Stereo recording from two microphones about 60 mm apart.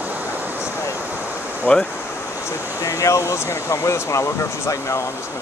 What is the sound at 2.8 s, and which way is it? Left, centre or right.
Speech, left.